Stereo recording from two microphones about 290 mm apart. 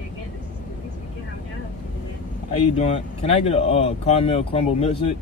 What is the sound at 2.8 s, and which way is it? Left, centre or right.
Speech, left.